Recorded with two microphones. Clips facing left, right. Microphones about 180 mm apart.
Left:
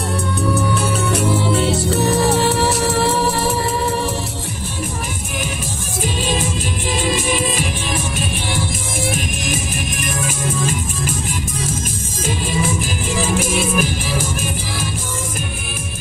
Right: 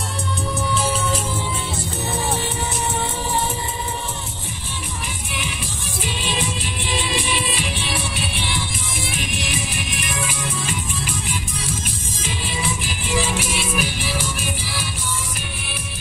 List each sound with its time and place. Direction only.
0.6 s music: 60° left (ahead or behind)
6.2 s music: 45° left (ahead or behind)
12.3 s music: 45° left (ahead or behind)